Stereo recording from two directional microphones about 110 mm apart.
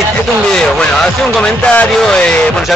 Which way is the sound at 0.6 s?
5° left (ahead or behind).